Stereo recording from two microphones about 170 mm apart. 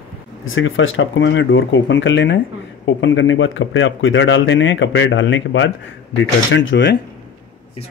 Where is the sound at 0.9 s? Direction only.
90° left.